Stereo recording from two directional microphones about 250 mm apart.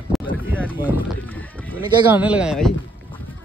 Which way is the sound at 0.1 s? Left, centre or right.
Centre.